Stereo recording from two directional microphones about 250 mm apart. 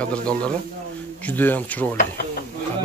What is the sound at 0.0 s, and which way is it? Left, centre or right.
A man's voice, centre.